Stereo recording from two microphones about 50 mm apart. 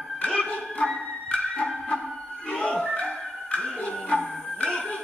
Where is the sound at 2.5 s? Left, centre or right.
Left.